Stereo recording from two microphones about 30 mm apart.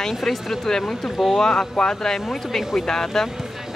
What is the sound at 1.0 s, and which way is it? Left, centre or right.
Speech, centre.